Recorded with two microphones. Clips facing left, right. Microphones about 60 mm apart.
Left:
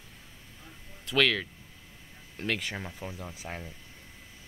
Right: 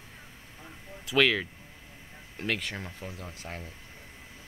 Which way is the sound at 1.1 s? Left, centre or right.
Centre.